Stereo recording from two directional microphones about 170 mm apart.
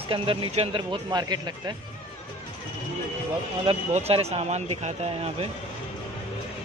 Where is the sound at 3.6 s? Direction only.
35° right (ahead or behind).